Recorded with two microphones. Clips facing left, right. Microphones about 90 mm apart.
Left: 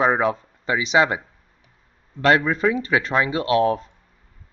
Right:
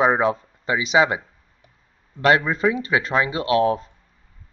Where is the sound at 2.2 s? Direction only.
5° right (ahead or behind).